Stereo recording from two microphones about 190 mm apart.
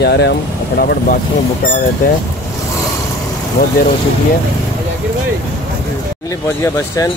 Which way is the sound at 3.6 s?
50° left (ahead or behind).